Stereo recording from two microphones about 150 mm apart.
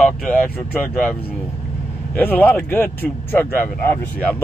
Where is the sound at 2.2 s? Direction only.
10° left (ahead or behind).